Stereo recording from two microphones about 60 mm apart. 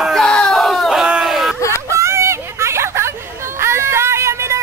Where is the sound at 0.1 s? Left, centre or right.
Centre.